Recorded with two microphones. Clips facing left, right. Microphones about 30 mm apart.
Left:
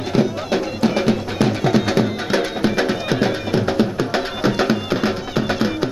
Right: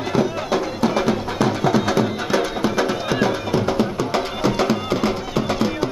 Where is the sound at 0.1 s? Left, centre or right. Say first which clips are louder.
Left 1 dB; centre.